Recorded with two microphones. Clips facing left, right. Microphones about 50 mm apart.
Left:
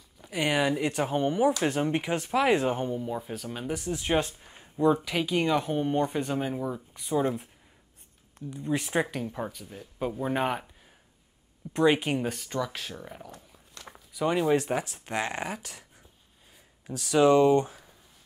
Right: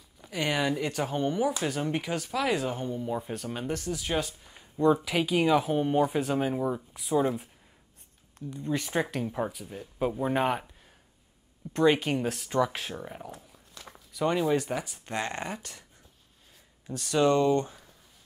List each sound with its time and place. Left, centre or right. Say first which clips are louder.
0.2 s speech: left 2 dB; centre
3.0 s speech: right 1 dB; centre
3.9 s speech: left 6 dB; left
4.7 s speech: even; centre
11.7 s speech: even; centre
12.5 s speech: right 5 dB; centre
13.5 s walk: left 1 dB; centre
14.5 s speech: left 2 dB; centre
16.8 s speech: left 3 dB; centre